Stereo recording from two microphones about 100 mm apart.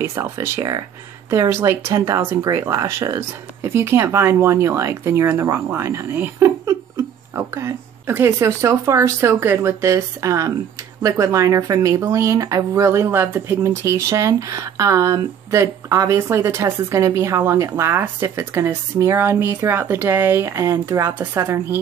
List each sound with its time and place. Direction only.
0.0 s speech: 25° right (ahead or behind)
6.4 s speech: 35° right (ahead or behind)